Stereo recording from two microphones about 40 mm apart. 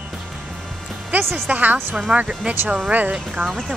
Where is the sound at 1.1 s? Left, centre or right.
Right.